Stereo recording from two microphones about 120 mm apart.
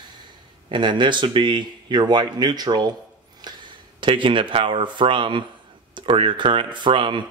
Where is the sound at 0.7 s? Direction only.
40° right (ahead or behind).